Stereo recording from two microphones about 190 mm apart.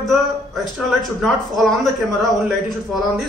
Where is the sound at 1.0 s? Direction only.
Centre (ahead or behind).